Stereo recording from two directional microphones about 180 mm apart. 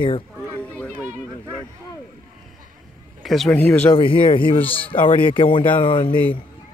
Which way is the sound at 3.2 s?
Centre (ahead or behind).